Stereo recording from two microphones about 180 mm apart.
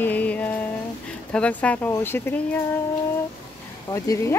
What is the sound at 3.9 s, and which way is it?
Speech, 15° left (ahead or behind).